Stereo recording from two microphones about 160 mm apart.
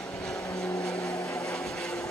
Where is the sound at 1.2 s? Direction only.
20° left (ahead or behind).